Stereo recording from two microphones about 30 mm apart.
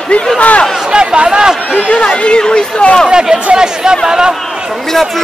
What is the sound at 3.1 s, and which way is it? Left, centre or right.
Speech, right.